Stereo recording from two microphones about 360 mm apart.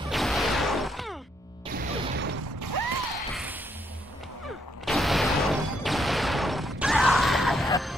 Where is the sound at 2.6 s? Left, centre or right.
Right.